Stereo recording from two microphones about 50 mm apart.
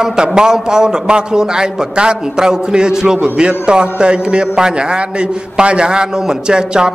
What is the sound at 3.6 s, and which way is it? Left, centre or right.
A man's voice, centre.